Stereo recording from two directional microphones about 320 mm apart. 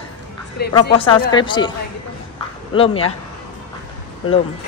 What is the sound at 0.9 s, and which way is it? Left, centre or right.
Speech, centre.